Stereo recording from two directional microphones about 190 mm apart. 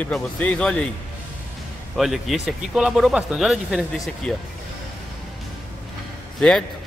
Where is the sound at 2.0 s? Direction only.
Centre (ahead or behind).